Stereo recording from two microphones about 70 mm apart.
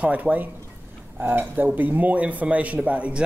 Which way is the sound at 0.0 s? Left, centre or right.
Centre.